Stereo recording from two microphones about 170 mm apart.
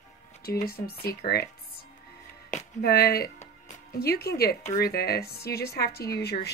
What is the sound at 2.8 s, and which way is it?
A woman's voice, 65° left (ahead or behind).